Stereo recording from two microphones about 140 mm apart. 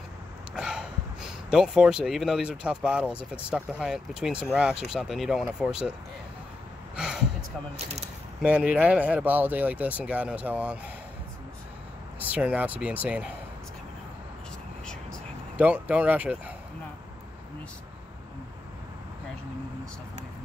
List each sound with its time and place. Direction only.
0.6 s a sound: 5° right (ahead or behind)
1.5 s speech: 5° right (ahead or behind)
7.7 s speech: 50° right (ahead or behind)
8.4 s speech: 10° right (ahead or behind)
12.2 s speech: 10° right (ahead or behind)
15.5 s speech: 10° right (ahead or behind)